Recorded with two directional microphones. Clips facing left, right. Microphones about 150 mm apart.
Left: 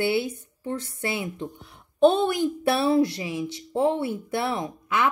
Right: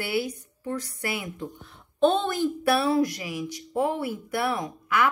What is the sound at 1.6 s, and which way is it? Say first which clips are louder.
Speech: left 3 dB; 10° left (ahead or behind).